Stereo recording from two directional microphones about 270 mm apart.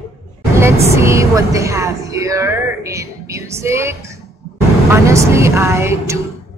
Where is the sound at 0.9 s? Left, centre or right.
Centre.